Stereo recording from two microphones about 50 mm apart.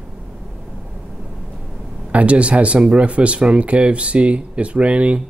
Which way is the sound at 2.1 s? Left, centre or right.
Right.